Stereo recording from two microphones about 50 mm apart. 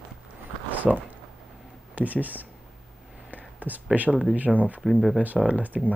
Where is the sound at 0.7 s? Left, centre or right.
Right.